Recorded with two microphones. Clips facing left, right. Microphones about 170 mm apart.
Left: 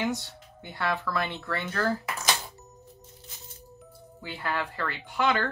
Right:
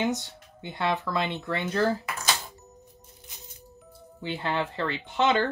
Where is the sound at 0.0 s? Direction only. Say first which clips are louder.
Right 2 dB; 20° right (ahead or behind).